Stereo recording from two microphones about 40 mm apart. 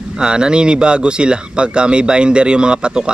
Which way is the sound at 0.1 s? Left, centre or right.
Right.